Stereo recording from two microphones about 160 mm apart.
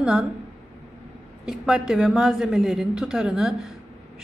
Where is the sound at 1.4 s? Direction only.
5° right (ahead or behind).